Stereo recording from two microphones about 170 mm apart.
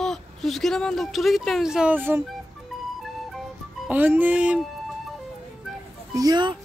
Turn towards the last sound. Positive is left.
turn(degrees=-25)  # may be behind; listen again after turning